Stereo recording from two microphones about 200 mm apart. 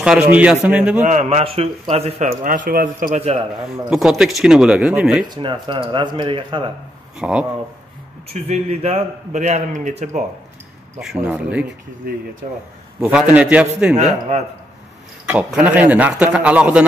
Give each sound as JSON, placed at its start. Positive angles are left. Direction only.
{"t": 0.0, "sound": "a man's voice", "side_deg": -5}
{"t": 1.0, "sound": "a man's voice", "side_deg": -35}
{"t": 3.2, "sound": "speech", "side_deg": -30}
{"t": 3.9, "sound": "speech", "side_deg": 0}
{"t": 5.2, "sound": "speech", "side_deg": -20}
{"t": 7.2, "sound": "speech", "side_deg": -5}
{"t": 8.3, "sound": "a man's voice", "side_deg": -30}
{"t": 11.2, "sound": "a man's voice", "side_deg": -5}
{"t": 12.1, "sound": "speech", "side_deg": -50}
{"t": 13.0, "sound": "a man's voice", "side_deg": -5}
{"t": 13.9, "sound": "a man's voice", "side_deg": -35}
{"t": 15.3, "sound": "a man's voice", "side_deg": -5}